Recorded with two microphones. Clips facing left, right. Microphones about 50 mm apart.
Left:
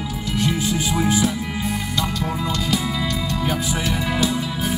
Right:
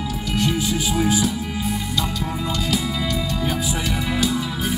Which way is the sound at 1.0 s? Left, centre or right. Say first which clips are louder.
Left 1 dB; left.